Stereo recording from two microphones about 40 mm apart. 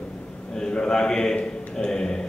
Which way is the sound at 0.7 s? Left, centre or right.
Left.